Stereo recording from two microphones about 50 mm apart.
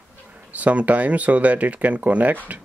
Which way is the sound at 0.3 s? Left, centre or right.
Right.